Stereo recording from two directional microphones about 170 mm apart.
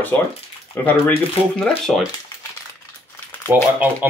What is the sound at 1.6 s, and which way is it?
Speech, 5° left (ahead or behind).